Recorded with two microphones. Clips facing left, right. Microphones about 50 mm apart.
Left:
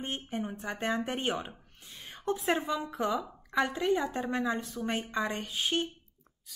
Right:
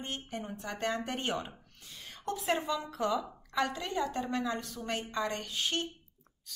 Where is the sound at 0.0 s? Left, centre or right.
Left.